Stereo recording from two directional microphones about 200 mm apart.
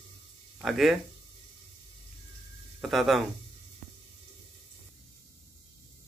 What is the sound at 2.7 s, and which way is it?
Speech, centre (ahead or behind).